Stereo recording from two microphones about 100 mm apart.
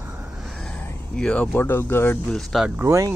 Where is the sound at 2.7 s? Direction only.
25° right (ahead or behind).